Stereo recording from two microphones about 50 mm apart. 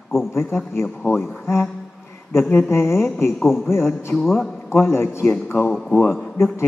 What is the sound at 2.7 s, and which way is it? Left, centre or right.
Speech, left.